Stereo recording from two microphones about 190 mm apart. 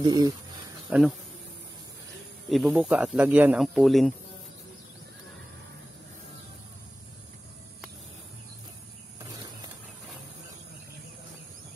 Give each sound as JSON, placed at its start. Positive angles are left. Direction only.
{"t": 0.0, "sound": "speech", "side_deg": -20}
{"t": 0.8, "sound": "speech", "side_deg": -5}
{"t": 2.5, "sound": "speech", "side_deg": 0}
{"t": 9.2, "sound": "a sound", "side_deg": -20}